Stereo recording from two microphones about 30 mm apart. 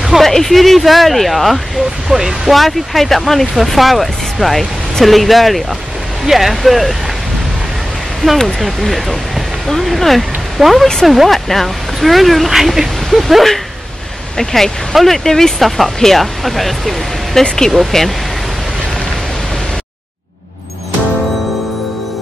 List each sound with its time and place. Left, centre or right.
0.2 s speech: centre
2.0 s speech: centre
2.5 s speech: centre
8.2 s speech: left
8.5 s speech: centre
14.3 s speech: centre
17.4 s speech: centre